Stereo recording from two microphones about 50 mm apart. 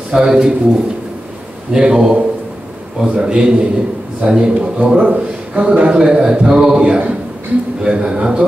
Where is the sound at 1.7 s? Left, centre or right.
Centre.